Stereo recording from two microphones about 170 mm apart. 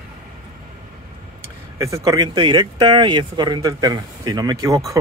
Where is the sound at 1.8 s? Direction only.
20° right (ahead or behind).